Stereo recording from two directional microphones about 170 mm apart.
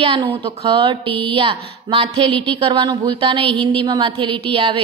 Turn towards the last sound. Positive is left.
turn(degrees=-30)  # may be behind; listen again after turning